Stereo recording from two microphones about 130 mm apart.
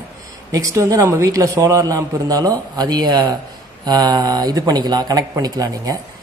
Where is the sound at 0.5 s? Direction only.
25° right (ahead or behind).